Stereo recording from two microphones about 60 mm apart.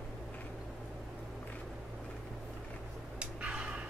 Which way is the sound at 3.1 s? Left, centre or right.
Centre.